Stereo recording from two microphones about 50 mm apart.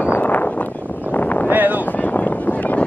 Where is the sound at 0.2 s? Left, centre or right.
Left.